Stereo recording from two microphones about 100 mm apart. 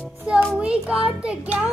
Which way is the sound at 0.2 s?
15° right (ahead or behind).